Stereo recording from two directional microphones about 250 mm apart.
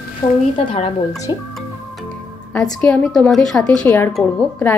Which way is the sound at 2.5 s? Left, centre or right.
Centre.